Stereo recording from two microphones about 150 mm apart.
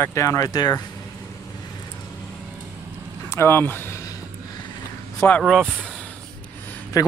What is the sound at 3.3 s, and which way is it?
Speech, 15° left (ahead or behind).